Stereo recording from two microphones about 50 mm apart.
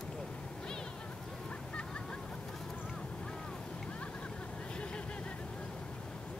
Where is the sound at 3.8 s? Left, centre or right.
Left.